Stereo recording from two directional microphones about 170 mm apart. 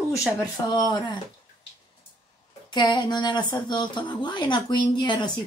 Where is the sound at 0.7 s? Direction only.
25° left (ahead or behind).